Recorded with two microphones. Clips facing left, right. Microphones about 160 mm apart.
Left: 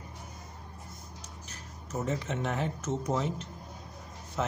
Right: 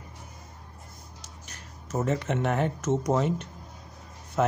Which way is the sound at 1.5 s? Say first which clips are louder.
Right 5 dB; 80° right.